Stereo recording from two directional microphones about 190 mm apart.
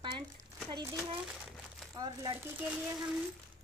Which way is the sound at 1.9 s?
25° right (ahead or behind).